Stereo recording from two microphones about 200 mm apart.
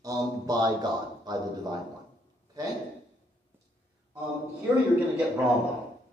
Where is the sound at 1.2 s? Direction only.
20° right (ahead or behind).